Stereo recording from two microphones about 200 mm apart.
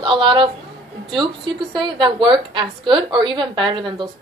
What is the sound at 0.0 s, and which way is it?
A woman's voice, 25° right (ahead or behind).